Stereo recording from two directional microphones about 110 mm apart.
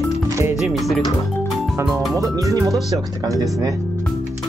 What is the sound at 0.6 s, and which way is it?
Speech, centre (ahead or behind).